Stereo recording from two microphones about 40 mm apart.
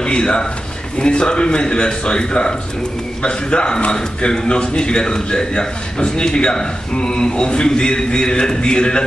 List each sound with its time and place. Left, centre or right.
0.0 s a man's voice: left